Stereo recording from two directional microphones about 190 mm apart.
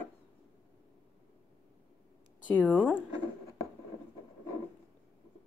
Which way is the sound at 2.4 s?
10° left (ahead or behind).